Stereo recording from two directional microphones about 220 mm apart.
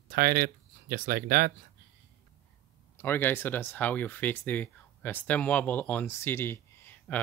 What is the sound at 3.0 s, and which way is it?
Speech, 10° left (ahead or behind).